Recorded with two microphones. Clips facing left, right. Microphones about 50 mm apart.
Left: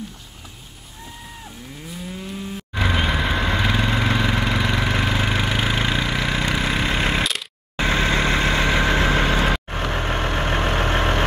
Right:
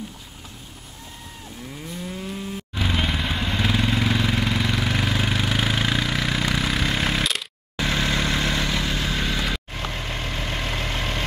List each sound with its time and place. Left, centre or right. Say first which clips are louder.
1.9 s moo: even; centre
2.7 s vehicle: left 4 dB; left
4.0 s vehicle: left 2 dB; left
4.3 s vehicle: left 2 dB; left
5.6 s a sound: left 1 dB; centre
7.7 s vehicle: left 4 dB; left